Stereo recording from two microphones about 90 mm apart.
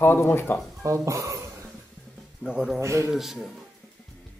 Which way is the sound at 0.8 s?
35° right (ahead or behind).